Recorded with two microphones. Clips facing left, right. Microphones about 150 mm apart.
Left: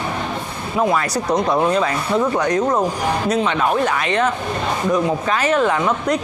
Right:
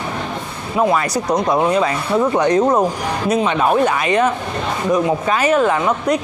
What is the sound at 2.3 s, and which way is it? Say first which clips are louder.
Speech: right 4 dB; 25° right (ahead or behind).